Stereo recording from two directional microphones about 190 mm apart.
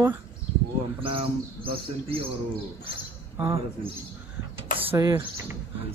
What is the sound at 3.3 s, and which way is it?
Speech, 15° right (ahead or behind).